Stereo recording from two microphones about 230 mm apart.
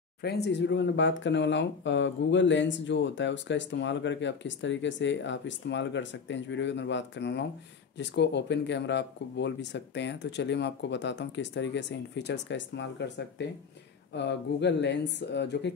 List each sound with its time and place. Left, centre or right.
0.2 s speech: left